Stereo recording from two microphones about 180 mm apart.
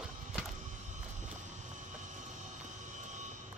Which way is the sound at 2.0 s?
45° right (ahead or behind).